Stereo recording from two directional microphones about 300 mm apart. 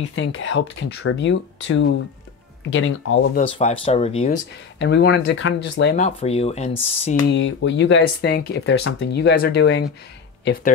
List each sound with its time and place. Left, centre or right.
0.1 s speech: left
3.3 s speech: centre
4.7 s speech: left
5.9 s speech: left
7.2 s speech: left